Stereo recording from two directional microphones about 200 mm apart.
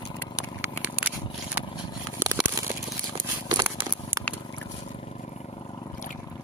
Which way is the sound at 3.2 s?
25° right (ahead or behind).